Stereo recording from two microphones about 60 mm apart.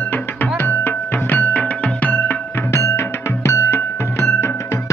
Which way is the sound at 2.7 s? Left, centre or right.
Left.